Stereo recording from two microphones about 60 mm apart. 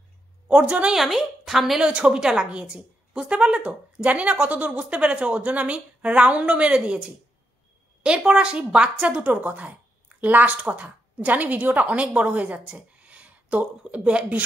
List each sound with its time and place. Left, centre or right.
0.5 s a woman's voice: centre
0.9 s a woman's voice: centre
1.8 s a woman's voice: centre
10.6 s speech: centre